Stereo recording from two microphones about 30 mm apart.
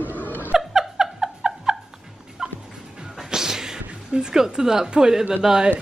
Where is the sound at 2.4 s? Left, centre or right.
Right.